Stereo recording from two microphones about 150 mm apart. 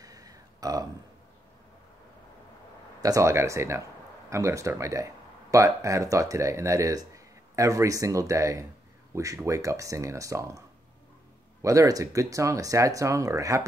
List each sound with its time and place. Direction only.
0.0 s a sound: 25° right (ahead or behind)
3.0 s speech: 20° right (ahead or behind)
11.6 s speech: 20° right (ahead or behind)